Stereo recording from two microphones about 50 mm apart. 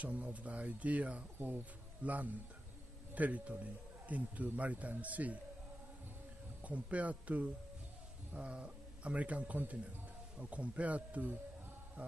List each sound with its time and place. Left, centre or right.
0.0 s a man's voice: right
6.6 s a man's voice: right